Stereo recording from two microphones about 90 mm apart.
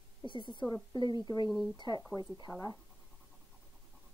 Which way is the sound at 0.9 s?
50° left (ahead or behind).